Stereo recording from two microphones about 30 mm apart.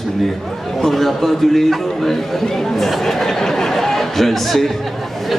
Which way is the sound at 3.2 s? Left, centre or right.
Centre.